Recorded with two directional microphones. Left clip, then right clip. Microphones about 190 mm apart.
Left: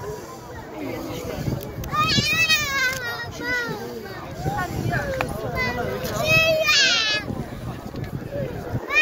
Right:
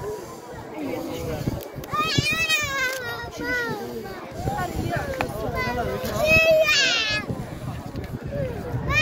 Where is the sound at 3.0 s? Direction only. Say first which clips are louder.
Left 1 dB; 65° right (ahead or behind).